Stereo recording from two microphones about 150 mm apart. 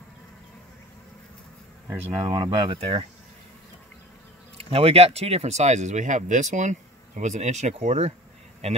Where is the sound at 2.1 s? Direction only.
30° right (ahead or behind).